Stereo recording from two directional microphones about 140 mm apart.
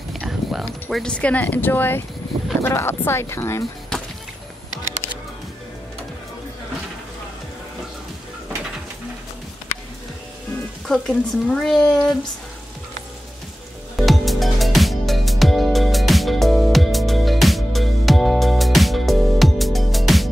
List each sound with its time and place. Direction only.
0.1 s speech: centre (ahead or behind); by 3.6 s 20° left (ahead or behind)
10.9 s speech: 5° left (ahead or behind)
13.9 s music: centre (ahead or behind)